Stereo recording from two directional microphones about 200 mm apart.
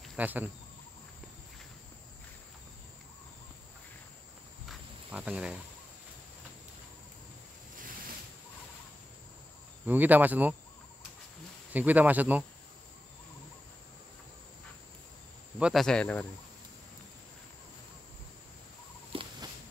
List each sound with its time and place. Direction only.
0.0 s cricket: 5° right (ahead or behind)
4.6 s cricket: 5° right (ahead or behind)
9.8 s speech: 10° right (ahead or behind)
11.7 s speech: 10° right (ahead or behind)
15.6 s speech: centre (ahead or behind)
19.1 s a sound: 25° right (ahead or behind)